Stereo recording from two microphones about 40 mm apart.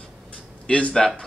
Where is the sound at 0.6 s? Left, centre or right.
Left.